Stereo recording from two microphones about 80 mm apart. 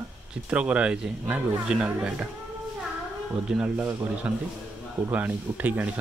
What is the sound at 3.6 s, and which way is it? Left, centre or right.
Speech, right.